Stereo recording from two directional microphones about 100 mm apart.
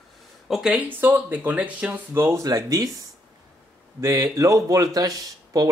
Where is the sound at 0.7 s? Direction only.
20° right (ahead or behind); by 2.9 s 35° right (ahead or behind).